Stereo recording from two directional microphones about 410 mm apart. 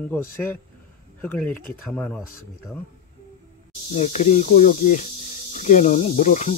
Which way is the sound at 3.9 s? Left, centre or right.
Centre.